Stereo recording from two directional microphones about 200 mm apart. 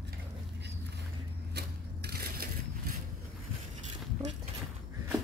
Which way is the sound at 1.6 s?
55° right (ahead or behind).